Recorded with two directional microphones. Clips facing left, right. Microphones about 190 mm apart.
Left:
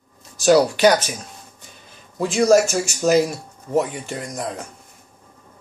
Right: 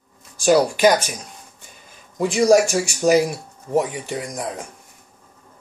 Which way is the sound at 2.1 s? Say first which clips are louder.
Even; 15° right (ahead or behind).